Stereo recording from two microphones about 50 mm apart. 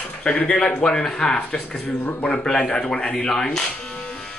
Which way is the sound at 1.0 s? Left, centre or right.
Centre.